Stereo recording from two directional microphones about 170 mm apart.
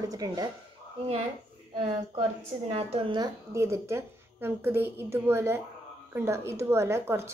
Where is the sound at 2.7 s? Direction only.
30° right (ahead or behind).